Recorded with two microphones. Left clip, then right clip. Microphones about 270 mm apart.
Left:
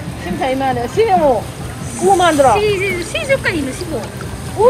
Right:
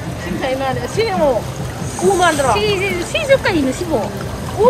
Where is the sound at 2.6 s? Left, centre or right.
Centre.